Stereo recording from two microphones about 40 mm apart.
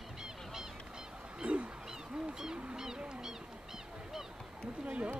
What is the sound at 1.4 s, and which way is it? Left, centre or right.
Speech, right.